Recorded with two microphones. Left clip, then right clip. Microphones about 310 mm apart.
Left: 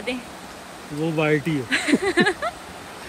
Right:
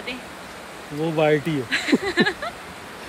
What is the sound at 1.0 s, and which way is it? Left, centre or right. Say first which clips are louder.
Speech: right 2 dB; right.